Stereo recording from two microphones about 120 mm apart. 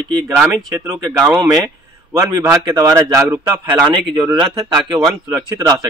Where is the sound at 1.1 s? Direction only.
10° right (ahead or behind).